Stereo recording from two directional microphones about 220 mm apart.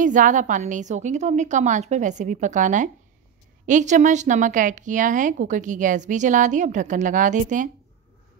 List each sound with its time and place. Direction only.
0.0 s a woman's voice: 35° right (ahead or behind)